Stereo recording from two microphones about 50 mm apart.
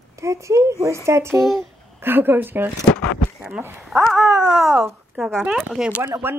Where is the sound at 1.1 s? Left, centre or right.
Right.